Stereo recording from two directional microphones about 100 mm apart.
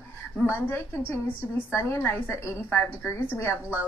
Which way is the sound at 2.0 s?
20° left (ahead or behind).